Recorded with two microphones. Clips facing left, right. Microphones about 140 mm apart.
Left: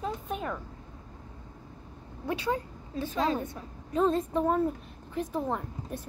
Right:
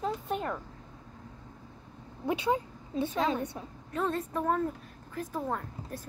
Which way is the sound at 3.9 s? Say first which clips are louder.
Left 6 dB; 30° left (ahead or behind).